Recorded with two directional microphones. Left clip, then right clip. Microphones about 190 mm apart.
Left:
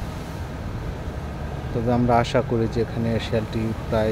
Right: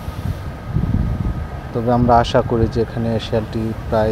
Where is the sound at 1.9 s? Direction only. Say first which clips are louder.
Right 6 dB; 20° right (ahead or behind).